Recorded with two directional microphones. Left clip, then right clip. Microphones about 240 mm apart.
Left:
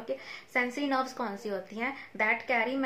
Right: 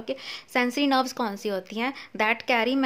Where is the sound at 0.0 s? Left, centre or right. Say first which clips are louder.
Right 4 dB; right.